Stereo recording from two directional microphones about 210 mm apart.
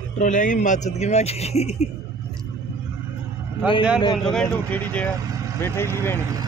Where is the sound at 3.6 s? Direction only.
5° right (ahead or behind).